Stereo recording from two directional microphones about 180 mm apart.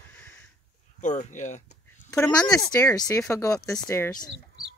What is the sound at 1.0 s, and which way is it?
Speech, 40° left (ahead or behind).